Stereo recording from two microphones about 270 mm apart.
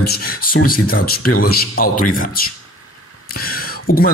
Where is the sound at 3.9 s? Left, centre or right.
Left.